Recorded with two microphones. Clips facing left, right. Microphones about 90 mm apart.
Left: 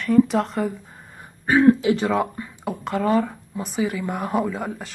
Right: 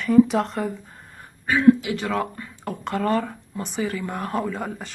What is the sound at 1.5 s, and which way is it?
Speech, 25° left (ahead or behind).